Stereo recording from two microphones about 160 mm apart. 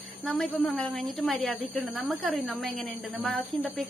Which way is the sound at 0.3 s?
Centre (ahead or behind).